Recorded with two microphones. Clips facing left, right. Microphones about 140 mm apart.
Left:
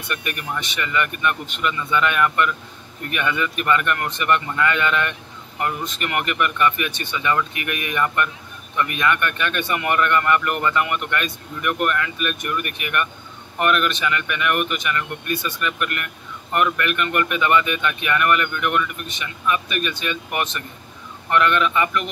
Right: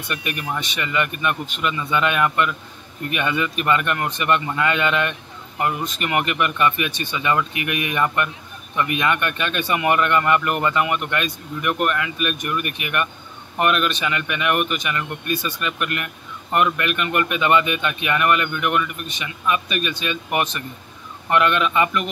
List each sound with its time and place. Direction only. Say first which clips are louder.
0.1 s speech: right 1 dB; 20° right (ahead or behind)